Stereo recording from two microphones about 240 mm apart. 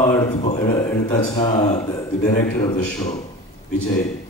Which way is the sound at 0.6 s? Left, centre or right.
Centre.